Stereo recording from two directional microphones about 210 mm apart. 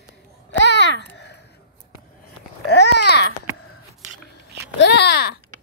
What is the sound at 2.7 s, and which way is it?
Babbling, 55° left (ahead or behind).